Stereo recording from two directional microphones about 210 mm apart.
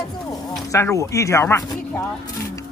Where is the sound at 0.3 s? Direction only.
15° left (ahead or behind).